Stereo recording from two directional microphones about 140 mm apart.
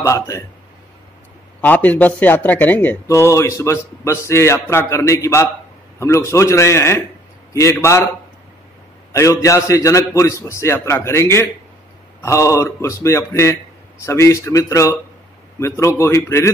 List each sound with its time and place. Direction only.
0.0 s a man's voice: 20° left (ahead or behind)
1.6 s a man's voice: 10° left (ahead or behind)
9.1 s a man's voice: 20° left (ahead or behind)